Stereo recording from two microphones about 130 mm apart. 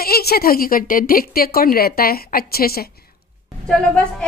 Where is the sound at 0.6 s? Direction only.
90° left.